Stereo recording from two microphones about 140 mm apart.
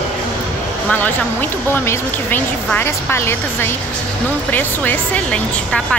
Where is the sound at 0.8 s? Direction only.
10° left (ahead or behind).